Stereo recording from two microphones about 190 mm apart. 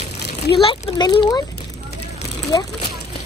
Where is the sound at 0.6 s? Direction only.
25° left (ahead or behind).